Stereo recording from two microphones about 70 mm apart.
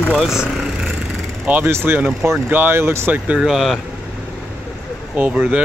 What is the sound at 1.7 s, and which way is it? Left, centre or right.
Speech, right.